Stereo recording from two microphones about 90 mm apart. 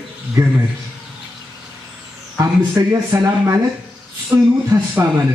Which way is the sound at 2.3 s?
35° right (ahead or behind).